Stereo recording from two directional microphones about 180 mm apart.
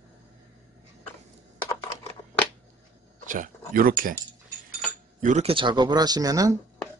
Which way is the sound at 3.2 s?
45° right (ahead or behind).